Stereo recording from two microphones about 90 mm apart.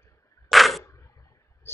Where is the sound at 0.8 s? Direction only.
30° left (ahead or behind).